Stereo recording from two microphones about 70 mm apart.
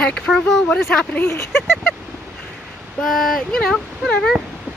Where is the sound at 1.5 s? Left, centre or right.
Centre.